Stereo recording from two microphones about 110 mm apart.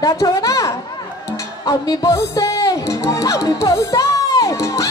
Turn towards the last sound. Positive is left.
turn(degrees=30)  # may be behind; listen again after turning